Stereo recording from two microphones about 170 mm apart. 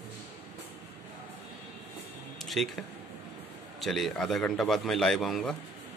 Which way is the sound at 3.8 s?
Centre (ahead or behind).